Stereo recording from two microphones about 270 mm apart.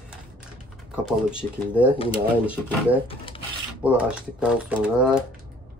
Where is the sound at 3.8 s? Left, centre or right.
Centre.